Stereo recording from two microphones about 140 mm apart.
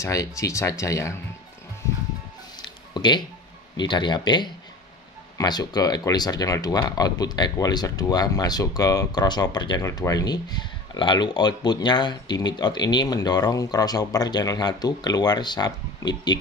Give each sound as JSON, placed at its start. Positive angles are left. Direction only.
{"t": 0.0, "sound": "speech", "side_deg": 25}
{"t": 2.9, "sound": "a sound", "side_deg": 30}
{"t": 3.7, "sound": "speech", "side_deg": 35}